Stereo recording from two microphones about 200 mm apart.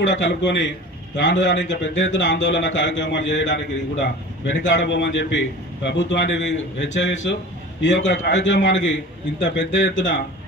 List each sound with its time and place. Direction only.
0.0 s a man's voice: 65° left (ahead or behind)